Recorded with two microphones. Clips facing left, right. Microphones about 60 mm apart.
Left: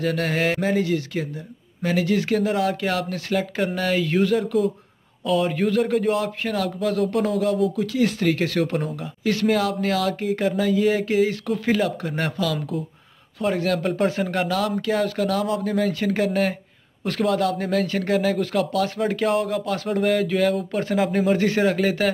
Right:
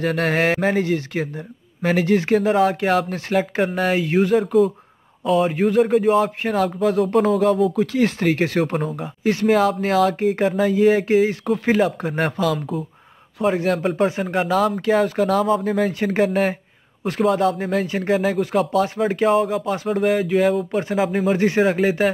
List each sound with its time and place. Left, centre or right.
0.0 s speech: right; by 6.1 s centre
6.1 s speech: right
7.2 s speech: right
13.4 s speech: centre
14.5 s speech: right
19.2 s speech: centre
21.4 s speech: centre